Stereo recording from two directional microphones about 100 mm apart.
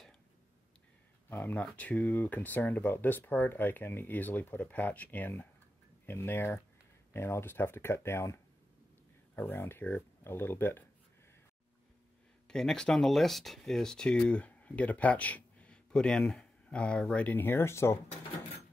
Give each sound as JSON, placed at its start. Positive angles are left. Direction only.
{"t": 1.3, "sound": "speech", "side_deg": 20}
{"t": 12.4, "sound": "speech", "side_deg": 5}